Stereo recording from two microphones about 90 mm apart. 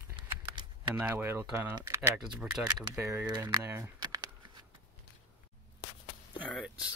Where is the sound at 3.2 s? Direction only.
45° right (ahead or behind).